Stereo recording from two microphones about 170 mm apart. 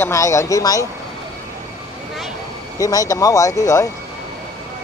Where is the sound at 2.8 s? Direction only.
20° left (ahead or behind).